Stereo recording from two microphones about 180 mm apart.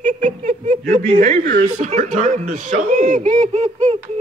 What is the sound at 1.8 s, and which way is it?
A woman's voice, 40° right (ahead or behind).